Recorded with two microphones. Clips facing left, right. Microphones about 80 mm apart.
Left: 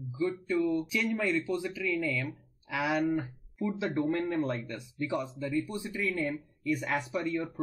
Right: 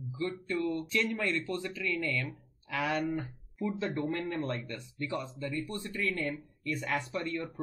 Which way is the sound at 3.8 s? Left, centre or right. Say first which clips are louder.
Left 5 dB; centre.